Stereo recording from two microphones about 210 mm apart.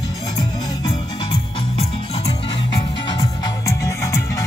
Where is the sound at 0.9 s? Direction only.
25° left (ahead or behind).